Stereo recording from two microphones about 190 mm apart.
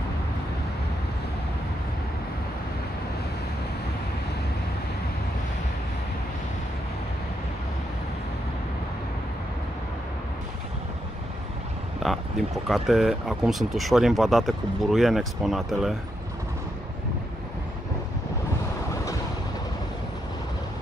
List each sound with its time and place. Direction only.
12.0 s speech: centre (ahead or behind)